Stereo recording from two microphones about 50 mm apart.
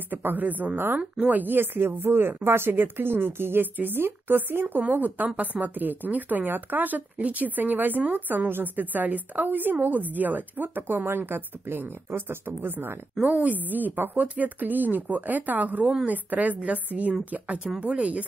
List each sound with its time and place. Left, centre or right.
0.1 s speech: right
13.2 s speech: right
14.2 s speech: right